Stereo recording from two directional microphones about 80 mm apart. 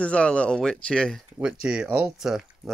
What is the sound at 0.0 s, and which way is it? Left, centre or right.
Speech, centre.